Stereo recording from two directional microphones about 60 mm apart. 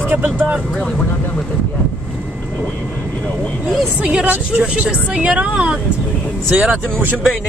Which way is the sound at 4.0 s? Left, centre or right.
Centre.